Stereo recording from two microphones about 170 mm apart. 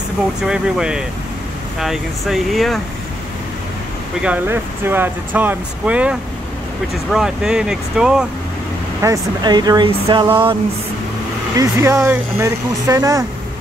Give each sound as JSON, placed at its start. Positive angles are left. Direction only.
{"t": 0.5, "sound": "speech", "side_deg": -5}
{"t": 4.2, "sound": "speech", "side_deg": -10}
{"t": 9.0, "sound": "speech", "side_deg": -20}
{"t": 11.5, "sound": "speech", "side_deg": -20}